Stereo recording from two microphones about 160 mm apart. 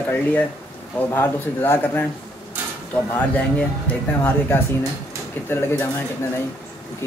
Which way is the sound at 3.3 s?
10° left (ahead or behind).